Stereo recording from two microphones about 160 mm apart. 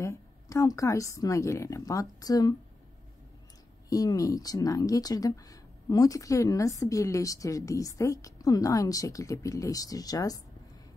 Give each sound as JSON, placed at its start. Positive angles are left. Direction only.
{"t": 0.0, "sound": "speech", "side_deg": 20}
{"t": 3.9, "sound": "speech", "side_deg": 20}